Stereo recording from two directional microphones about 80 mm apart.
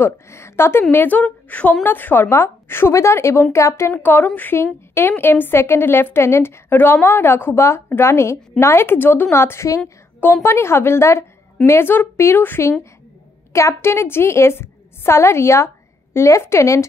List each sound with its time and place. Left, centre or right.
0.0 s a woman's voice: left